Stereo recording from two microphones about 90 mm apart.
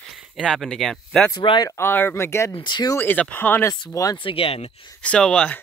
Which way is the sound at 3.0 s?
20° left (ahead or behind).